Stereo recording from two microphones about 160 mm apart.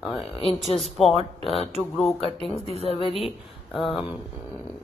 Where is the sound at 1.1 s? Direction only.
40° left (ahead or behind).